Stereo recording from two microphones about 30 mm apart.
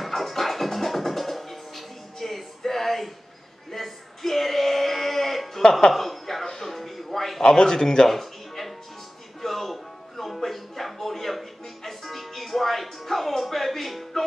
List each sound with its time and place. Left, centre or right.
0.0 s music: centre
5.7 s speech: centre
5.9 s a sound: centre
6.4 s music: centre
7.4 s a man's voice: left
8.1 s music: centre